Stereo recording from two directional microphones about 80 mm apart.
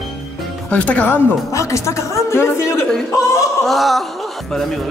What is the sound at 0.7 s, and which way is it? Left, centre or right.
Speech, centre.